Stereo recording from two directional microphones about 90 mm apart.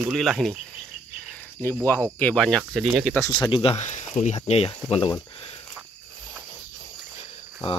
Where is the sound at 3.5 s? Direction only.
90° left.